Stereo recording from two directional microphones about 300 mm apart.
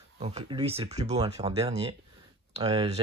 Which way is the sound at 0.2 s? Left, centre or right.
Right.